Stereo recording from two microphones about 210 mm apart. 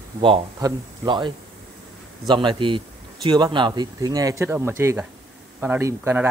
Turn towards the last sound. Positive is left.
turn(degrees=-10)  # may be behind; listen again after turning